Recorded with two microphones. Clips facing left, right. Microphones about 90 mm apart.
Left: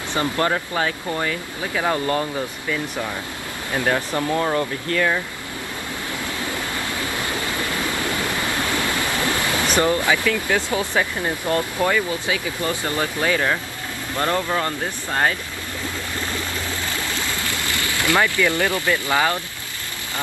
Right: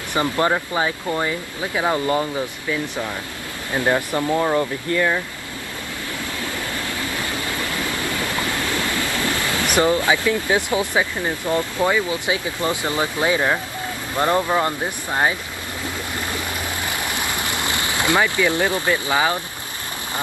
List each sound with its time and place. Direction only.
0.1 s speech: 15° right (ahead or behind)
3.7 s speech: 20° right (ahead or behind)
7.6 s a sound: 20° left (ahead or behind)
8.8 s waves: 20° left (ahead or behind)
10.0 s speech: 20° right (ahead or behind)
16.9 s boat: 15° right (ahead or behind)